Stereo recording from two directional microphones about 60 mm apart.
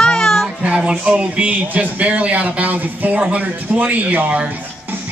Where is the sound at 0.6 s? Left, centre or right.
Centre.